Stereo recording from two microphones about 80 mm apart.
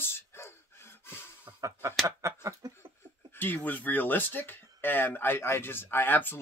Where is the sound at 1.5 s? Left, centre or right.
Right.